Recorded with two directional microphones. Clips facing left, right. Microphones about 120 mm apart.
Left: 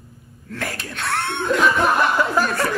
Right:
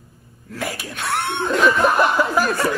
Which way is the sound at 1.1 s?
25° right (ahead or behind).